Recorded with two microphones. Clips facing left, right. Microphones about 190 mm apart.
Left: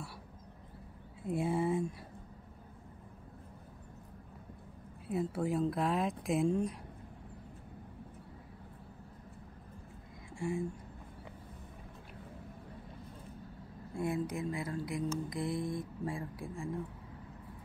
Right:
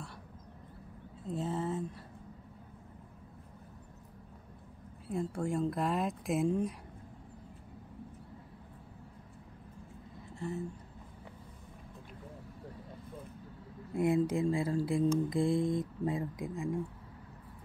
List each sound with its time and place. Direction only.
1.2 s a sound: 10° left (ahead or behind)
5.1 s speech: 5° left (ahead or behind)
10.4 s speech: 10° left (ahead or behind)
13.9 s mantra: 25° right (ahead or behind)